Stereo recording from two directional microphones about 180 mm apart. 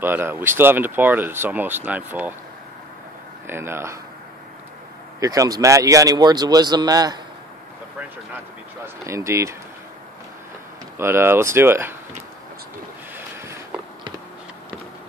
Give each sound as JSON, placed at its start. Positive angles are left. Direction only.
{"t": 0.0, "sound": "speech", "side_deg": -10}
{"t": 3.4, "sound": "speech", "side_deg": -15}
{"t": 5.2, "sound": "a man's voice", "side_deg": -20}
{"t": 8.8, "sound": "speech", "side_deg": -15}
{"t": 11.0, "sound": "speech", "side_deg": -15}
{"t": 13.4, "sound": "a sound", "side_deg": -15}